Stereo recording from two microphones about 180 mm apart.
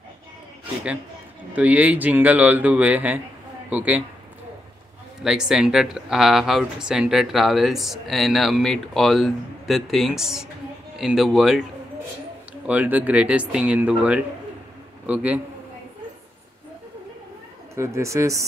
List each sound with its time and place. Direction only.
1.5 s speech: 10° right (ahead or behind)
5.2 s speech: 5° right (ahead or behind)
12.6 s speech: 10° right (ahead or behind)
17.7 s speech: 15° right (ahead or behind)